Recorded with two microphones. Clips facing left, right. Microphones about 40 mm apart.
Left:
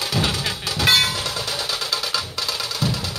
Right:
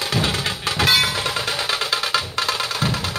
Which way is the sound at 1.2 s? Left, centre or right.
Right.